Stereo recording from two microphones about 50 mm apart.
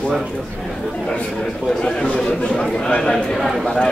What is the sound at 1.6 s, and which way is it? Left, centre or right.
A man's voice, centre.